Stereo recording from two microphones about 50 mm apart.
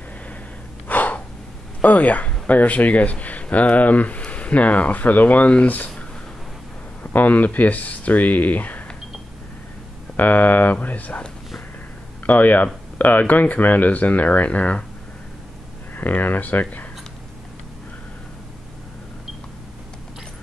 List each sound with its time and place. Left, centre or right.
0.8 s gasp: left
1.8 s speech: left
10.1 s speech: left
12.3 s speech: left
15.9 s speech: left